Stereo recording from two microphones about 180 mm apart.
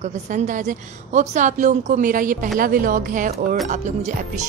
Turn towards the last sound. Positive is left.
turn(degrees=-40)  # may be behind; listen again after turning